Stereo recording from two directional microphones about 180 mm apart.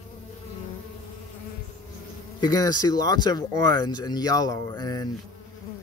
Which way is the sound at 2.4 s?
20° left (ahead or behind).